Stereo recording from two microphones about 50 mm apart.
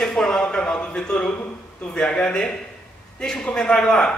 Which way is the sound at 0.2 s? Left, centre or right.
Centre.